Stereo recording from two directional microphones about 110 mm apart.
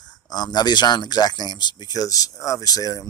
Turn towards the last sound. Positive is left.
turn(degrees=35)  # may be behind; listen again after turning